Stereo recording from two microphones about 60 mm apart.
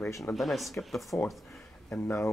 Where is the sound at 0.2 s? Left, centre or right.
Centre.